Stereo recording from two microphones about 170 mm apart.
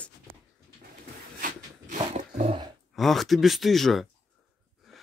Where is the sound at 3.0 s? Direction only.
Centre (ahead or behind).